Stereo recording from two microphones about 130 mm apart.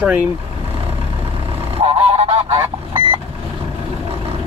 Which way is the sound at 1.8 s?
50° right (ahead or behind).